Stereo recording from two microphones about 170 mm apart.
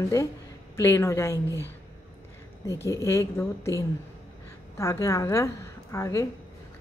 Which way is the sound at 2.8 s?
15° left (ahead or behind).